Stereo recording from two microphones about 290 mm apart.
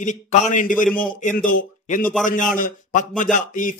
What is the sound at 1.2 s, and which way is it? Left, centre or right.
Speech, left.